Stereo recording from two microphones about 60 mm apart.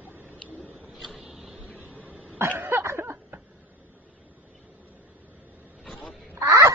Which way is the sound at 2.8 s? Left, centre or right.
Right.